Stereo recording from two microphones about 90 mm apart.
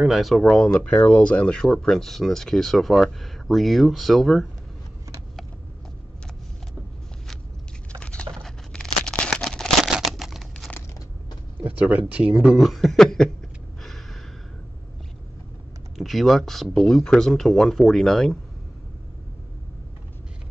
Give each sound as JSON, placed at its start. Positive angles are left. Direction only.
{"t": 0.0, "sound": "speech", "side_deg": -5}
{"t": 0.7, "sound": "speech", "side_deg": 15}
{"t": 8.0, "sound": "a sound", "side_deg": 10}
{"t": 11.7, "sound": "a sound", "side_deg": -15}
{"t": 12.1, "sound": "speech", "side_deg": -15}
{"t": 12.5, "sound": "speech", "side_deg": 0}
{"t": 13.8, "sound": "gasp", "side_deg": 0}
{"t": 16.0, "sound": "speech", "side_deg": 0}